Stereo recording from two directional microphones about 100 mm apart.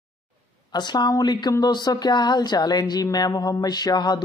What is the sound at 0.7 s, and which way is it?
A woman's voice, 45° left (ahead or behind).